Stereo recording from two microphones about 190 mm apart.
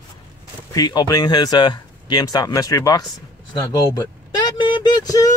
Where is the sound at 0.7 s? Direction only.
20° left (ahead or behind).